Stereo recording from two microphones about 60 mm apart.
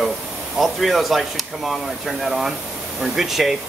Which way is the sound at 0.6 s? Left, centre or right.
Centre.